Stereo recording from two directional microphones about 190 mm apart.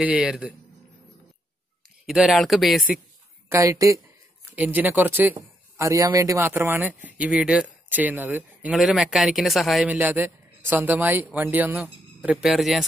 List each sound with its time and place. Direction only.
0.0 s speech: 5° right (ahead or behind)
2.0 s speech: centre (ahead or behind)
3.4 s speech: 15° right (ahead or behind); by 12.8 s centre (ahead or behind)